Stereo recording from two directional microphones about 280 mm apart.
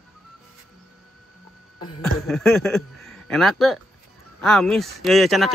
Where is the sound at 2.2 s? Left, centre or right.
Centre.